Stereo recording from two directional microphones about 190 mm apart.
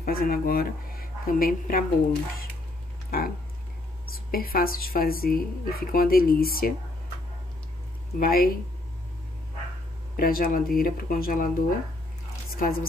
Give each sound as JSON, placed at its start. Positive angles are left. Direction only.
{"t": 0.0, "sound": "speech", "side_deg": 50}
{"t": 3.1, "sound": "speech", "side_deg": 50}
{"t": 8.2, "sound": "speech", "side_deg": 50}
{"t": 10.1, "sound": "speech", "side_deg": 50}
{"t": 12.5, "sound": "speech", "side_deg": 50}